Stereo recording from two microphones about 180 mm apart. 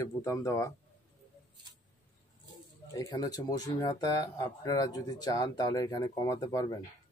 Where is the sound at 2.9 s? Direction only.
20° left (ahead or behind).